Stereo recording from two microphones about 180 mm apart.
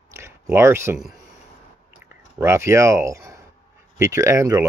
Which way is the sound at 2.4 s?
15° right (ahead or behind).